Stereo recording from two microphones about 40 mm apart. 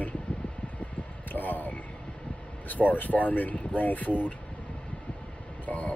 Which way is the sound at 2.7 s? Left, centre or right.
Left.